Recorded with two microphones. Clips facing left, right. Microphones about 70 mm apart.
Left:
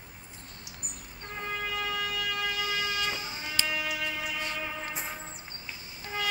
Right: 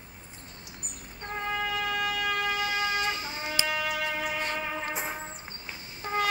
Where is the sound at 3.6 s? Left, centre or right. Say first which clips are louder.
Right 3 dB; right.